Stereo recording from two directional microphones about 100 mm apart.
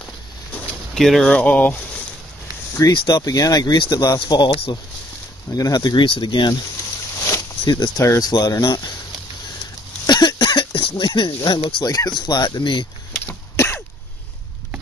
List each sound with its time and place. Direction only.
0.9 s speech: 5° left (ahead or behind)
1.3 s speech: 15° left (ahead or behind)
2.9 s speech: 45° left (ahead or behind)
5.5 s speech: 40° left (ahead or behind)
7.2 s a sound: 30° left (ahead or behind)
7.6 s speech: 45° left (ahead or behind)
10.0 s a sound: 45° left (ahead or behind)
11.8 s speech: 40° left (ahead or behind)
13.3 s throat clearing: 20° left (ahead or behind)